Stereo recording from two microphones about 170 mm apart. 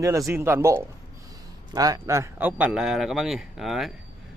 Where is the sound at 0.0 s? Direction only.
20° right (ahead or behind).